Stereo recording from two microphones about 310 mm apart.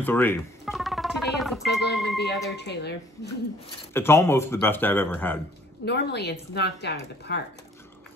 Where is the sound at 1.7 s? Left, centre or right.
Left.